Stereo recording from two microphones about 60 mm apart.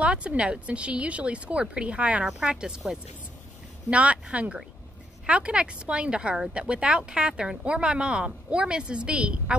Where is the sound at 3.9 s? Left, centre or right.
Right.